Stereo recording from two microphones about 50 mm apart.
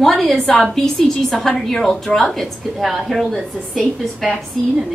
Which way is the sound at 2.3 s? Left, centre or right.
Centre.